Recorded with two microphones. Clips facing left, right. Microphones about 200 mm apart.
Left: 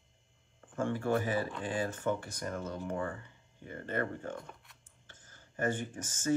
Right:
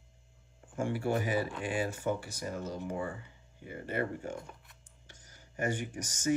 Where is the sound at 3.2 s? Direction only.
10° right (ahead or behind).